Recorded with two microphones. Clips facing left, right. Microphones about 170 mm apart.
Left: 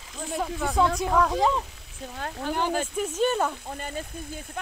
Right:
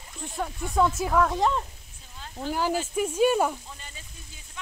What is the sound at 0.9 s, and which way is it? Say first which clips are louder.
Speech: left 1 dB; centre (ahead or behind).